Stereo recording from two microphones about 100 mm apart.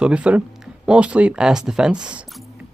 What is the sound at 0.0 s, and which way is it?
Speech, 10° right (ahead or behind).